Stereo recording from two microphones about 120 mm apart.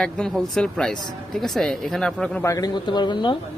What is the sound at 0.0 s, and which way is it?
Speech, 5° left (ahead or behind).